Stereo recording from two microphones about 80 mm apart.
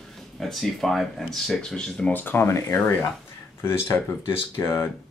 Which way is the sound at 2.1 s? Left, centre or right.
Left.